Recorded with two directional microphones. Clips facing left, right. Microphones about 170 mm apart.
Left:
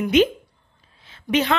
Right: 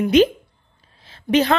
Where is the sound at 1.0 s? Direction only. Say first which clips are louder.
Right 4 dB; 35° right (ahead or behind).